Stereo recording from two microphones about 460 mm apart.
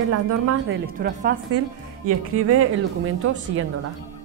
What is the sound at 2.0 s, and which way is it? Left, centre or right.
Speech, right.